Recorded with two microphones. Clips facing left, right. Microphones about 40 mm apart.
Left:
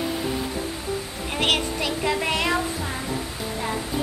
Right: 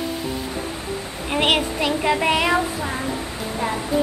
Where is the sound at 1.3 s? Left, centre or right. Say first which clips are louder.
Right 4 dB; centre.